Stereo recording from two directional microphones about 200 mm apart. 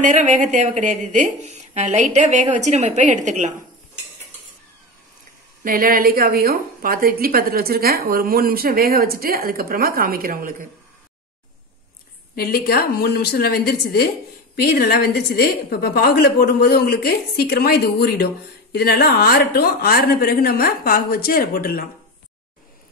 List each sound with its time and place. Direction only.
0.0 s speech: 40° right (ahead or behind)
5.6 s a woman's voice: 45° right (ahead or behind)
12.4 s a woman's voice: 50° left (ahead or behind)